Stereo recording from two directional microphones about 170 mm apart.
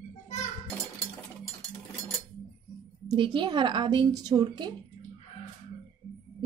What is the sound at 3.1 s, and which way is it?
A woman's voice, 25° right (ahead or behind).